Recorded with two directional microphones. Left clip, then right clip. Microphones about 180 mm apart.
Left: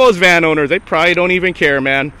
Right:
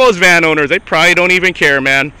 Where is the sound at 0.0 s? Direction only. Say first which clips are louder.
Right 1 dB; 15° left (ahead or behind).